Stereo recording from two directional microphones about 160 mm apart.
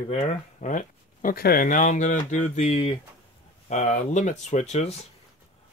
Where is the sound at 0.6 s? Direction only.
50° left (ahead or behind).